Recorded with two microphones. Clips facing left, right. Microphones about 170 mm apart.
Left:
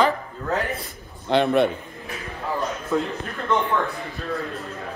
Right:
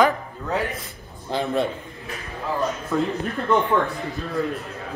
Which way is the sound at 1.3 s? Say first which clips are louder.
Left 5 dB; 70° left (ahead or behind).